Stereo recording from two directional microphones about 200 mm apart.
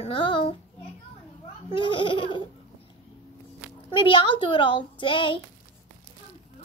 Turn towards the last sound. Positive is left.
turn(degrees=25)  # may be behind; listen again after turning